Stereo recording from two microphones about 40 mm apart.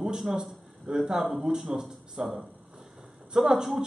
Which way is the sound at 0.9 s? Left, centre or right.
Centre.